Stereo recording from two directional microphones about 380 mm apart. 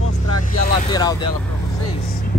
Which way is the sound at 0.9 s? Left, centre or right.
Centre.